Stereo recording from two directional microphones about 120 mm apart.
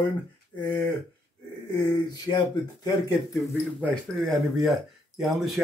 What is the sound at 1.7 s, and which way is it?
Speech, 30° left (ahead or behind).